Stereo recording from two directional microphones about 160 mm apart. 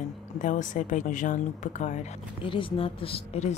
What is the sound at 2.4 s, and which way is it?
Speech, 30° left (ahead or behind).